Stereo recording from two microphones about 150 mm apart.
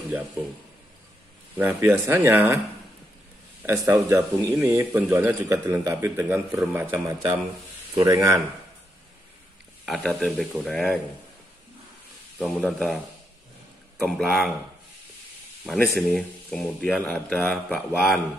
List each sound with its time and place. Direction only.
1.6 s speech: 10° right (ahead or behind)
3.6 s speech: 15° right (ahead or behind)
9.8 s speech: centre (ahead or behind)
12.4 s speech: centre (ahead or behind)
14.0 s speech: centre (ahead or behind)
15.6 s speech: centre (ahead or behind)